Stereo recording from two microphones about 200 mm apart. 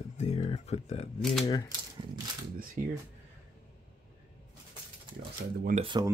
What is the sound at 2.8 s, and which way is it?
Speech, 40° right (ahead or behind).